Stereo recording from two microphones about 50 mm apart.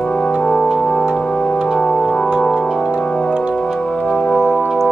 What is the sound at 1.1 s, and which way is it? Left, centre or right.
Organ, centre.